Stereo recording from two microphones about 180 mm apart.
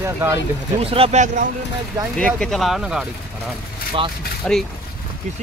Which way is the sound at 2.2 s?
5° left (ahead or behind).